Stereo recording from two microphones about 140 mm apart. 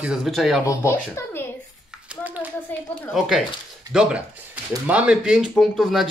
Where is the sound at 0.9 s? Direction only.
15° left (ahead or behind).